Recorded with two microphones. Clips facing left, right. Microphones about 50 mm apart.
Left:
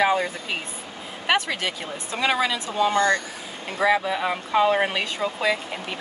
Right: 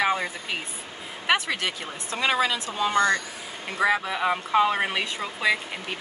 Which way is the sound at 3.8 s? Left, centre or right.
Centre.